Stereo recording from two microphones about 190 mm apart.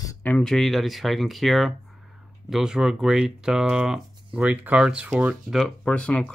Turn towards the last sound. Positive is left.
turn(degrees=5)  # may be behind; listen again after turning